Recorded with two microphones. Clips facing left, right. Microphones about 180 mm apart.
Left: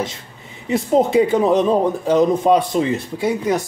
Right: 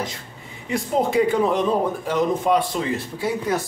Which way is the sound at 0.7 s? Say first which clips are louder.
Left 6 dB; 25° left (ahead or behind).